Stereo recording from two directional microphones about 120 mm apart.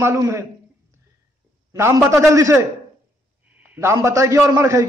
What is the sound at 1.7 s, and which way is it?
A man's voice, 25° right (ahead or behind).